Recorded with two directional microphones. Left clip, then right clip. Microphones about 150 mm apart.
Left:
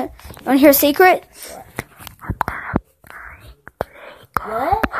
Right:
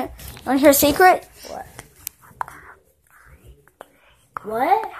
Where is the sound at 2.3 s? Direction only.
55° left (ahead or behind).